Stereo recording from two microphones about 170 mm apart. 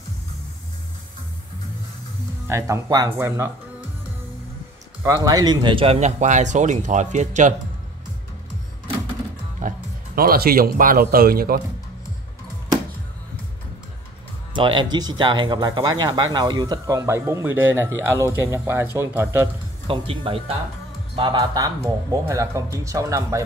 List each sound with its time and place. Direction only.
2.4 s speech: 15° right (ahead or behind)
5.0 s speech: 20° right (ahead or behind); by 7.5 s 45° right (ahead or behind)
9.6 s speech: 55° right (ahead or behind)
14.5 s speech: 30° right (ahead or behind)
19.4 s speech: 30° right (ahead or behind)